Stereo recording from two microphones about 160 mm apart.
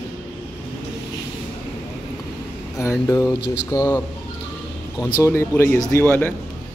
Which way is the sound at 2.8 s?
20° left (ahead or behind).